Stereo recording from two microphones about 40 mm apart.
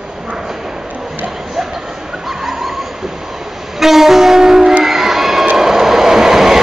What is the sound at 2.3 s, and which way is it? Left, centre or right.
Dog, centre.